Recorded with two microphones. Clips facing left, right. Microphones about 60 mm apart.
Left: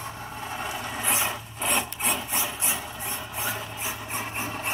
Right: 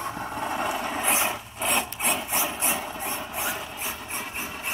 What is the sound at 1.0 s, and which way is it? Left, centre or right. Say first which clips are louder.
Mechanisms: right 1 dB; right.